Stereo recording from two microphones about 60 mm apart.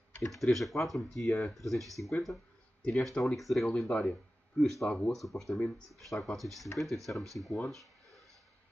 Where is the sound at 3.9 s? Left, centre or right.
Centre.